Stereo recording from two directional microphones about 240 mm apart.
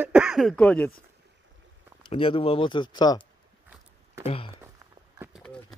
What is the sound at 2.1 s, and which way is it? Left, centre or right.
Speech, left.